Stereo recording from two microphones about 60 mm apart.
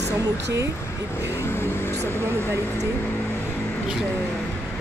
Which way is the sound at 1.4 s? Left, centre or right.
Left.